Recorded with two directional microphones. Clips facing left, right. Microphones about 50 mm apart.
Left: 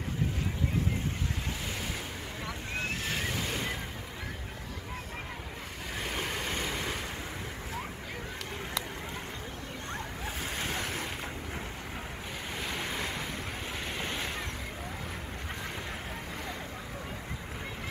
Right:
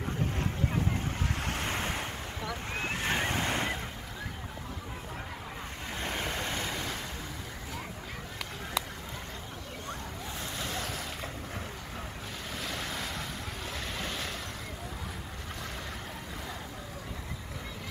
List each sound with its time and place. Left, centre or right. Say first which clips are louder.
1.6 s waves: right 4 dB; right
3.0 s waves: right 4 dB; right
5.9 s vehicle: even; centre
6.5 s waves: left 1 dB; centre
10.6 s waves: left 2 dB; left
12.6 s waves: left 2 dB; centre
13.9 s vehicle: left 2 dB; centre